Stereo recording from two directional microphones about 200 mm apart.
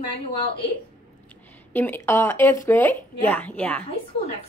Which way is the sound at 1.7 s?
10° left (ahead or behind).